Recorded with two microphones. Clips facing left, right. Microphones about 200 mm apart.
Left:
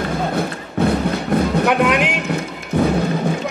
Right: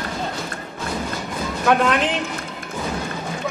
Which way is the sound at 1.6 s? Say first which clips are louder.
Left 2 dB; 15° left (ahead or behind).